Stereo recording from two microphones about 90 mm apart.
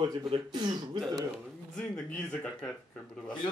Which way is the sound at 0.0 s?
70° right (ahead or behind).